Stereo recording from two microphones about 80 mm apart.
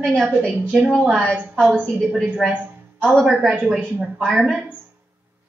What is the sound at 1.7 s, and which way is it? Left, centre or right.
Speech, centre.